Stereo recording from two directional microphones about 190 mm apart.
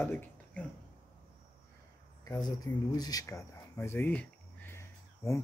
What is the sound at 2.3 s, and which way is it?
Speech, 20° left (ahead or behind).